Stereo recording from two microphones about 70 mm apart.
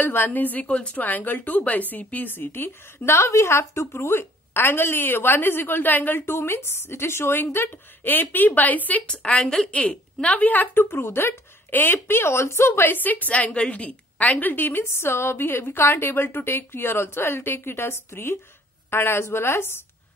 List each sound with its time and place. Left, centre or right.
0.0 s a woman's voice: left; by 9.7 s centre
9.7 s a woman's voice: centre; by 19.8 s left